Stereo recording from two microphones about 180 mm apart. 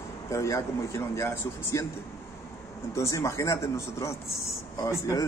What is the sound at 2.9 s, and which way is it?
A man's voice, 15° left (ahead or behind).